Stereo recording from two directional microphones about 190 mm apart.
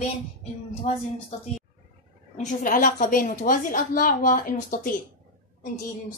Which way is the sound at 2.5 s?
45° left (ahead or behind).